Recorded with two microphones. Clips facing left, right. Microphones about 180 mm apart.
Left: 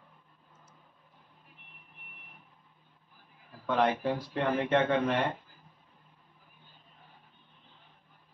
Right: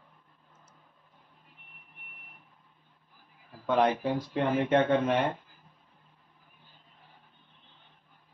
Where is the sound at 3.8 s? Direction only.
15° right (ahead or behind).